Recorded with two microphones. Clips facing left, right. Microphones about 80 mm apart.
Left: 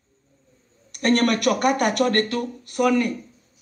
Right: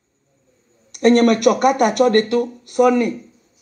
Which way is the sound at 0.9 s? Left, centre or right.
Right.